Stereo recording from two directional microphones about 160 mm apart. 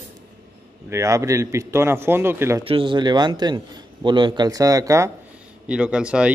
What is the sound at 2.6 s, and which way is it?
A man's voice, 35° right (ahead or behind).